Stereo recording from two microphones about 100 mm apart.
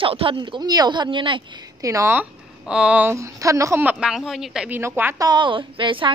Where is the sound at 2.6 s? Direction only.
10° right (ahead or behind).